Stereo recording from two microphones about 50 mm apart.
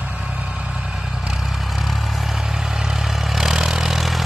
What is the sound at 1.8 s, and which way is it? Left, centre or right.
Vehicle, centre.